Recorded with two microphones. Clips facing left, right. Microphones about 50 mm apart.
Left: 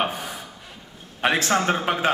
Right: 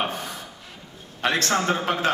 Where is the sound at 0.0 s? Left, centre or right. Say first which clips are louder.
Left 2 dB; centre.